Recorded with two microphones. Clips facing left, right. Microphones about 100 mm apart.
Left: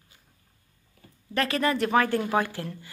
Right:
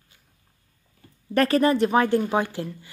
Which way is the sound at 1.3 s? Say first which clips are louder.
Right 7 dB; 45° right (ahead or behind).